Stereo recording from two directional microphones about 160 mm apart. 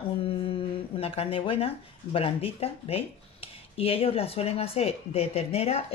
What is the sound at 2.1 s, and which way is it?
Speech, 35° left (ahead or behind).